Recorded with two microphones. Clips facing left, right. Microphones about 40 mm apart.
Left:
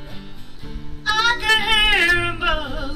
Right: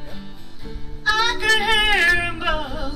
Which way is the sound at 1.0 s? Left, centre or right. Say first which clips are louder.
Left 1 dB; centre.